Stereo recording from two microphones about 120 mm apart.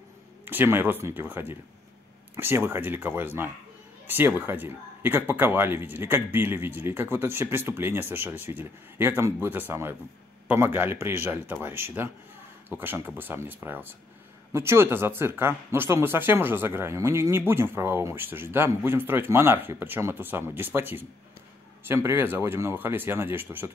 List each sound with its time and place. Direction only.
0.5 s speech: 15° right (ahead or behind)